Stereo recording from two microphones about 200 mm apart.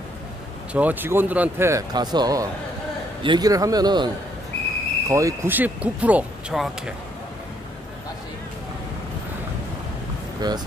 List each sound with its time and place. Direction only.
0.7 s a man's voice: 10° right (ahead or behind)
10.4 s a man's voice: 20° right (ahead or behind)